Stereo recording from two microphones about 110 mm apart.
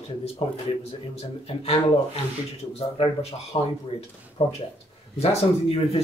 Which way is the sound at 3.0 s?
55° left (ahead or behind).